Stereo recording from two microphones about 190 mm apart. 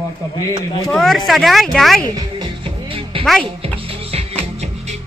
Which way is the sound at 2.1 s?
25° right (ahead or behind).